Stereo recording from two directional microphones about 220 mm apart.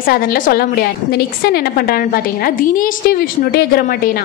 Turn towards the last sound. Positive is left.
turn(degrees=45)  # may be behind; listen again after turning